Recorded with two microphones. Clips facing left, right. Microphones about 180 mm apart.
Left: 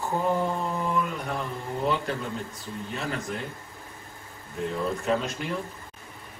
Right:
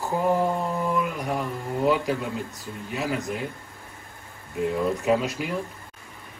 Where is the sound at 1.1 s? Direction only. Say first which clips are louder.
Right 3 dB; 10° right (ahead or behind).